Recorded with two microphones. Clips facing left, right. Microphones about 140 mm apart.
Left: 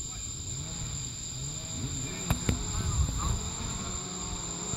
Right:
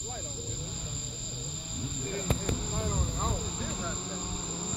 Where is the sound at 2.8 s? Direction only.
50° right (ahead or behind).